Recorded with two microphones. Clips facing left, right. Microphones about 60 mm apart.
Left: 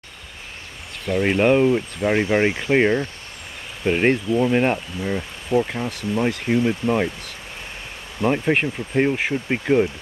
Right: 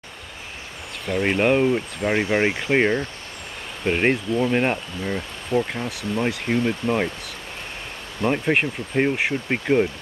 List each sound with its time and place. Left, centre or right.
1.0 s speech: centre
8.2 s speech: centre